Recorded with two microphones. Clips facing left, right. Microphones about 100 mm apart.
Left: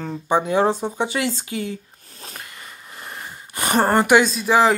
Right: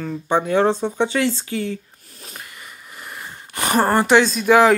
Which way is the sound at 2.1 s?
35° left (ahead or behind).